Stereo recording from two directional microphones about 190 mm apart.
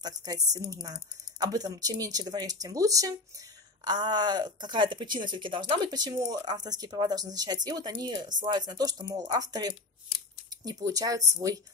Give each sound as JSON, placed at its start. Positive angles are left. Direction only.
{"t": 0.0, "sound": "speech", "side_deg": -20}